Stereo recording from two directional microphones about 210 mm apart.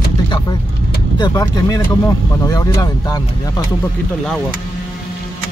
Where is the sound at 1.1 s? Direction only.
20° left (ahead or behind).